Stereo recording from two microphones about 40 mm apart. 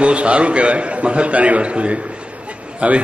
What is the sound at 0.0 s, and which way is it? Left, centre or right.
A man's voice, right.